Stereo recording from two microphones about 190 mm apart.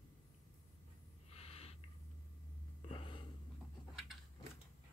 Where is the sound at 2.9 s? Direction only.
25° left (ahead or behind).